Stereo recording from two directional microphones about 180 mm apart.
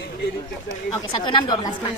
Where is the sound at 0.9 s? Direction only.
25° left (ahead or behind).